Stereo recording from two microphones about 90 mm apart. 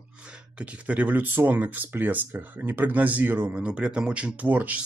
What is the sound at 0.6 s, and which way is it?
Speech, 15° right (ahead or behind).